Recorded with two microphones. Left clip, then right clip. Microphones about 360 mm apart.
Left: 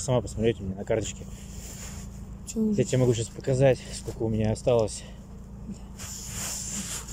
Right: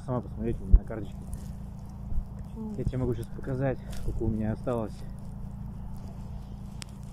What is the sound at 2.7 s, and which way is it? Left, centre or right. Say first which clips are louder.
Speech: left 8 dB; centre.